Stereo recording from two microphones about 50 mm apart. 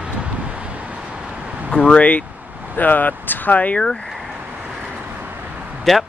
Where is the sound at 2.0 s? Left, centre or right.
Left.